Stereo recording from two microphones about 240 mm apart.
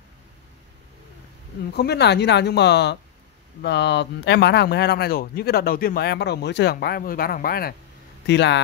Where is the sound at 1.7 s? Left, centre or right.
Left.